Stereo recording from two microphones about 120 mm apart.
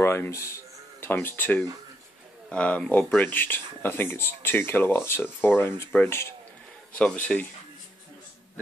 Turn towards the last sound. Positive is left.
turn(degrees=5)  # may be behind; listen again after turning